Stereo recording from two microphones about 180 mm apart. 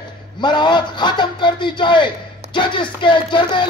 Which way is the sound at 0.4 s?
25° left (ahead or behind).